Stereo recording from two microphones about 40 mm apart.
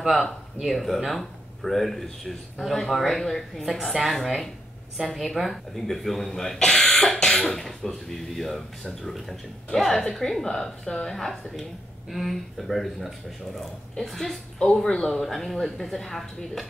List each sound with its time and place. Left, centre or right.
0.7 s speech: centre
14.6 s speech: centre
15.2 s speech: centre